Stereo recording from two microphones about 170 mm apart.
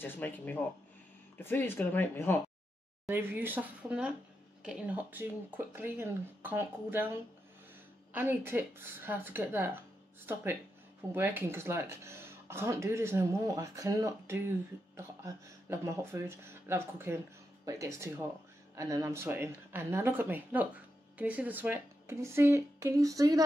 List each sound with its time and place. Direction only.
0.0 s speech: 10° left (ahead or behind)
3.1 s speech: 10° right (ahead or behind)